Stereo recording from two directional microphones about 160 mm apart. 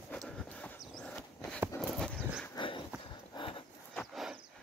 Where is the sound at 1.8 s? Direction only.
5° left (ahead or behind).